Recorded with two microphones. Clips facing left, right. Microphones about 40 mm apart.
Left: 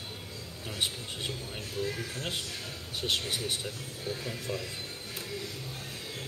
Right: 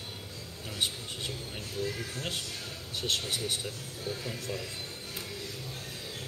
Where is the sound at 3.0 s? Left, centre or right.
Left.